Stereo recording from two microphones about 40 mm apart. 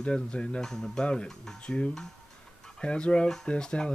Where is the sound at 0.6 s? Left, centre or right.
Centre.